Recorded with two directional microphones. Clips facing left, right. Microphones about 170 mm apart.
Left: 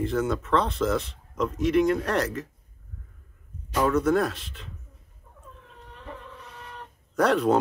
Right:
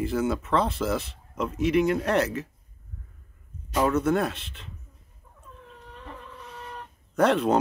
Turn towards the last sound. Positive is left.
turn(degrees=0)  # may be behind; listen again after turning